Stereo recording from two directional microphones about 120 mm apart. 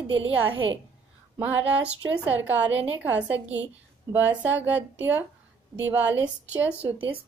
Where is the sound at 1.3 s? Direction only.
15° right (ahead or behind).